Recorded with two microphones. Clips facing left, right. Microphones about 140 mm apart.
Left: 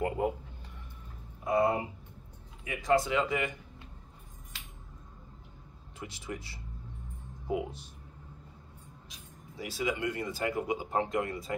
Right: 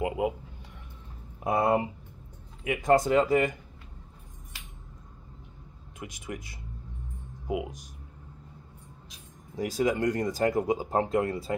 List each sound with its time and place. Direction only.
0.0 s a sound: 10° right (ahead or behind)
1.4 s speech: 60° right (ahead or behind); by 3.5 s 40° right (ahead or behind)
6.2 s speech: 15° right (ahead or behind)
9.6 s speech: 45° right (ahead or behind)